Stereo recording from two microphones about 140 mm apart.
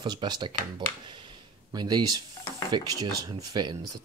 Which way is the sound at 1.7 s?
30° right (ahead or behind).